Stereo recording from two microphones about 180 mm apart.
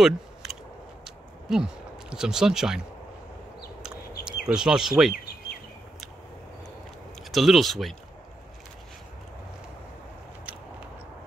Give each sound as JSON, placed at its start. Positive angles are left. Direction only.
{"t": 0.0, "sound": "a sound", "side_deg": 0}
{"t": 4.5, "sound": "speech", "side_deg": -5}
{"t": 7.2, "sound": "speech", "side_deg": 0}